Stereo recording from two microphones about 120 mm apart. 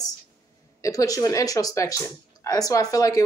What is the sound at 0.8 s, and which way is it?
Speech, 30° left (ahead or behind).